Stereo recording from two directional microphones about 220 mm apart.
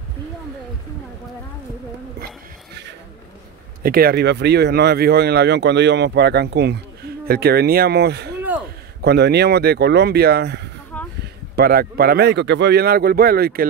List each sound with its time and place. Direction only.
3.8 s speech: 45° right (ahead or behind)
10.9 s a sound: 5° left (ahead or behind)
11.5 s speech: 45° right (ahead or behind)